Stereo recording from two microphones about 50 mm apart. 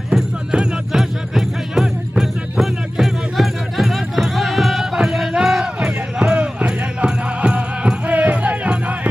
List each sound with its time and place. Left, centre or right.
0.1 s music: centre